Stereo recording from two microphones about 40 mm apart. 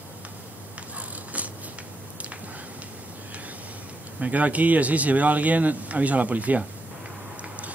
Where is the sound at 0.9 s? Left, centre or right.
Right.